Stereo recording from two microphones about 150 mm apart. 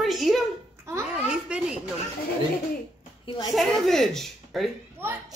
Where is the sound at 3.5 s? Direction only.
Centre (ahead or behind).